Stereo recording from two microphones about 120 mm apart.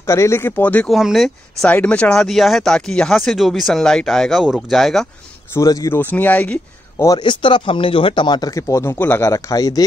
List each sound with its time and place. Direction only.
0.0 s speech: 25° left (ahead or behind)
0.8 s speech: centre (ahead or behind)
1.7 s speech: 10° left (ahead or behind)
5.5 s speech: 25° left (ahead or behind)
5.9 s speech: 15° left (ahead or behind)
7.1 s speech: 40° left (ahead or behind); by 9.3 s 15° left (ahead or behind)
9.3 s speech: 30° left (ahead or behind)